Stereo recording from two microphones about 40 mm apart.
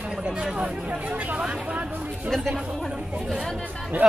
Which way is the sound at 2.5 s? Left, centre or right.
Centre.